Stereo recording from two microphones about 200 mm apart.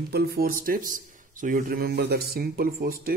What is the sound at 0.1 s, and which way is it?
Speech, 50° right (ahead or behind).